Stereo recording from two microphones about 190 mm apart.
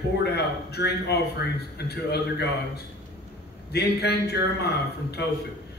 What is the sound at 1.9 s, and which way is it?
A man's voice, 55° left (ahead or behind).